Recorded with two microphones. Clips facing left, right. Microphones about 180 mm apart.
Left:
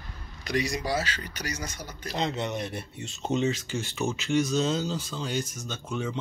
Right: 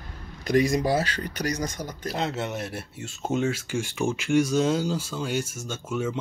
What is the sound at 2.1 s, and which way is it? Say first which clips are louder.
Speech: even; 5° right (ahead or behind).